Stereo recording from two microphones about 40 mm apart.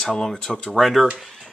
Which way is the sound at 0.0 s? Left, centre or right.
Centre.